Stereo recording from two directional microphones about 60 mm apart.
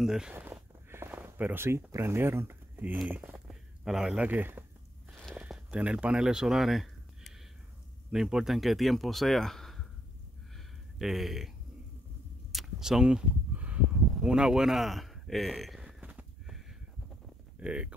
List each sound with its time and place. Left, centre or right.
0.0 s speech: centre
0.3 s a sound: right
1.2 s speech: right
3.8 s speech: centre
4.2 s speech: right
5.7 s speech: right
6.2 s speech: centre
11.0 s speech: centre
12.5 s a sound: centre
13.6 s a sound: right
14.2 s speech: centre
16.0 s a sound: right
17.6 s speech: centre